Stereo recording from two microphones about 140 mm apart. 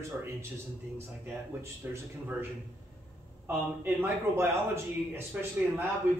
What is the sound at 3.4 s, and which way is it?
A man's voice, 15° right (ahead or behind).